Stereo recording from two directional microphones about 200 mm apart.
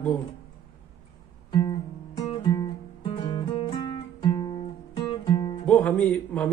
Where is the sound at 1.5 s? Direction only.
25° left (ahead or behind).